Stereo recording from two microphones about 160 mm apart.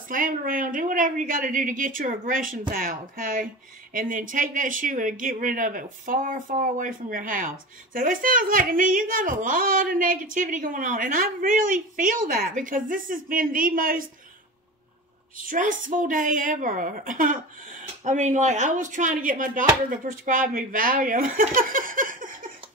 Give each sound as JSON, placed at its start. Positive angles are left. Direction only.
{"t": 0.1, "sound": "speech", "side_deg": -60}
{"t": 15.3, "sound": "speech", "side_deg": -55}